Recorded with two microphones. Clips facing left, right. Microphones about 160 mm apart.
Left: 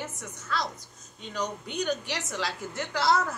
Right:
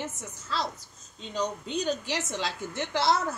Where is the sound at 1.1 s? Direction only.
25° right (ahead or behind).